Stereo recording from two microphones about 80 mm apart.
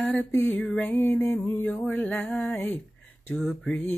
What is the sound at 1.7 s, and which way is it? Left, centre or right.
Music, centre.